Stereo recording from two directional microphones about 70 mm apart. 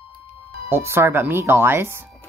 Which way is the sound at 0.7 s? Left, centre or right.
Right.